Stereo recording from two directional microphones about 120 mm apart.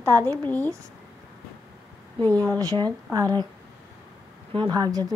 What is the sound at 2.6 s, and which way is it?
Speech, 30° right (ahead or behind).